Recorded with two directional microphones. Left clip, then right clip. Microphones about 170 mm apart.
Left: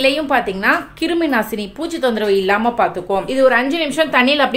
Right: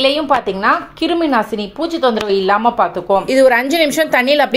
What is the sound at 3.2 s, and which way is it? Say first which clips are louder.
A woman's voice: right 1 dB; 30° right (ahead or behind).